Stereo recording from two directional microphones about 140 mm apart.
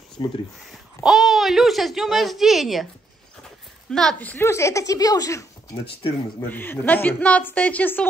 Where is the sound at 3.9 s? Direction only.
5° left (ahead or behind).